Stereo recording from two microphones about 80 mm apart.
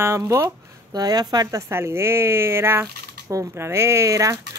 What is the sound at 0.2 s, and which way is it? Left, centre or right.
Speech, right.